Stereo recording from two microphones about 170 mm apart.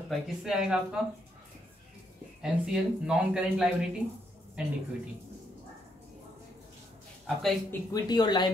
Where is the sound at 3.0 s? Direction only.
5° right (ahead or behind).